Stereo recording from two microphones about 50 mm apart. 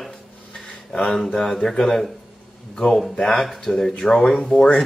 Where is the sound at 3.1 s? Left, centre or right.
Centre.